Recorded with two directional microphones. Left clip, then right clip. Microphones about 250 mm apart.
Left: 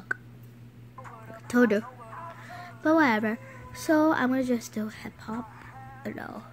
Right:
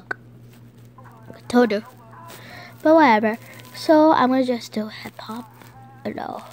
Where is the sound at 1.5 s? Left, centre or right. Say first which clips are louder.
Right 5 dB; centre.